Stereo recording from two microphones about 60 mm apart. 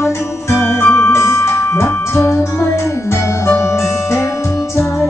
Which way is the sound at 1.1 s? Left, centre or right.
Left.